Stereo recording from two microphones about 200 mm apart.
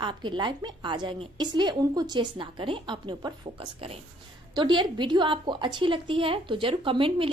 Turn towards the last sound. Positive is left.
turn(degrees=-25)  # may be behind; listen again after turning